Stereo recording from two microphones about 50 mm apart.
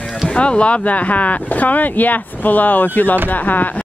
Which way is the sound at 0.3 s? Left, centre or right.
Left.